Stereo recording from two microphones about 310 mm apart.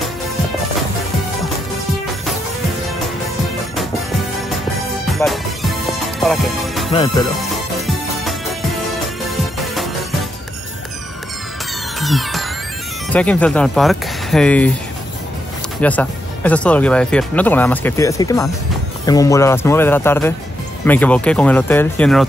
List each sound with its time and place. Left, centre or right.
5.1 s music: centre
6.9 s speech: centre
7.5 s music: centre
12.0 s music: centre
13.1 s speech: centre
15.8 s speech: centre